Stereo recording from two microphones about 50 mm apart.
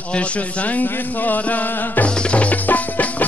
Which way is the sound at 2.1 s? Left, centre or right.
Left.